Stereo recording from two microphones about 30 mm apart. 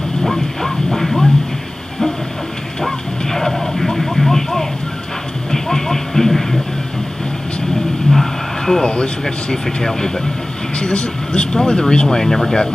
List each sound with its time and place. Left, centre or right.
0.2 s a sound: centre
2.8 s vehicle: centre
5.5 s music: centre
8.1 s vehicle: centre
8.8 s speech: left
9.2 s speech: left
10.8 s speech: left; by 12.5 s centre